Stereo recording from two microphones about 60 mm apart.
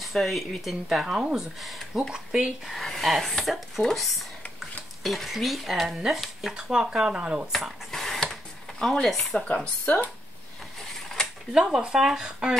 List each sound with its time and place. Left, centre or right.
0.0 s speech: centre
2.6 s speech: centre
7.5 s a sound: centre
8.9 s speech: centre
9.8 s speech: left
10.9 s mechanisms: centre
11.5 s speech: centre